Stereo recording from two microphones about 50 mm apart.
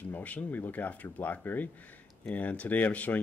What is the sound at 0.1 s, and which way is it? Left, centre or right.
Speech, left.